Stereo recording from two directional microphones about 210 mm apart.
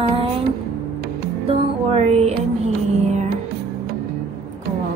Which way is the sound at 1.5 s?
30° right (ahead or behind).